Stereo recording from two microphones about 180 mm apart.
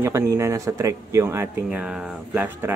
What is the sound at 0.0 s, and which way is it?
Speech, 15° right (ahead or behind).